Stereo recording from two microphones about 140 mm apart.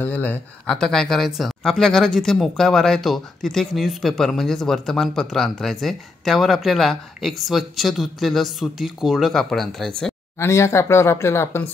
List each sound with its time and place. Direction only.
0.0 s speech: 15° left (ahead or behind)
0.7 s speech: 5° left (ahead or behind)
10.4 s speech: 20° left (ahead or behind)